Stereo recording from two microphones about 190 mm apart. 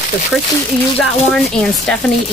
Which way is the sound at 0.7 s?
5° left (ahead or behind).